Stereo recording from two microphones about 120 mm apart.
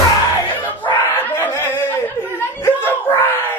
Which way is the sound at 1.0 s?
15° left (ahead or behind).